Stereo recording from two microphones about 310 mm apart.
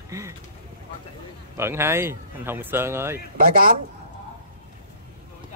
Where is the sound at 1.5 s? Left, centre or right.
Centre.